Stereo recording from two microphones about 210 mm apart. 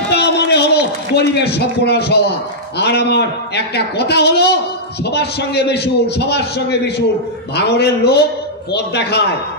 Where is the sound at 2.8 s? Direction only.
50° left (ahead or behind).